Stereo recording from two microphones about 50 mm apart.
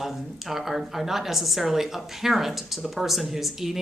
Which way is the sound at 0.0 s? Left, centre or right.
Centre.